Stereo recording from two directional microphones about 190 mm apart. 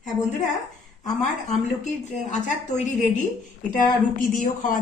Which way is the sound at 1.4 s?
40° left (ahead or behind).